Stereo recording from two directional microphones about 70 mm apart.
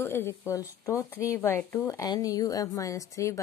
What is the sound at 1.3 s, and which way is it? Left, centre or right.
Speech, left.